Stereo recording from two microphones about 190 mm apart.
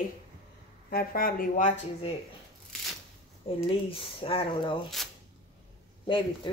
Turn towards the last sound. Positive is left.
turn(degrees=25)  # may be behind; listen again after turning